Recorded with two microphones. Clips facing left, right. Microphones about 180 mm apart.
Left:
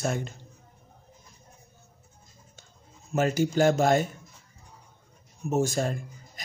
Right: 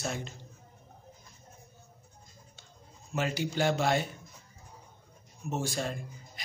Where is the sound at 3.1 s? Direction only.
45° left (ahead or behind).